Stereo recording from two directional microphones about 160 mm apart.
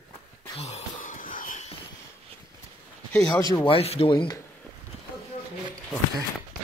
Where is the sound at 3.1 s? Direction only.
5° left (ahead or behind).